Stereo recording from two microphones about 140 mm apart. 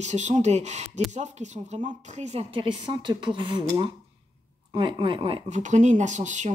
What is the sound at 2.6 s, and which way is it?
A woman's voice, 35° right (ahead or behind).